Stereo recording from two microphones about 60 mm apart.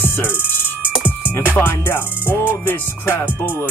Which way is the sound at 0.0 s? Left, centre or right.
Left.